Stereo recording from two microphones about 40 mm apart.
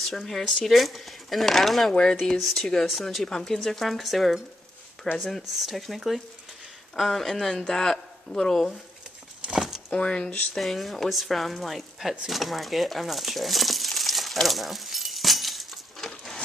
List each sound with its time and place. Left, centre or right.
0.0 s speech: centre
3.3 s speech: centre
9.5 s a sound: centre
9.9 s speech: left
10.5 s speech: centre
12.3 s coin: centre